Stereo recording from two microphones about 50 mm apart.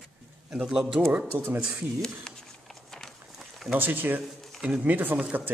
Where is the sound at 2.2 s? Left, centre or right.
Centre.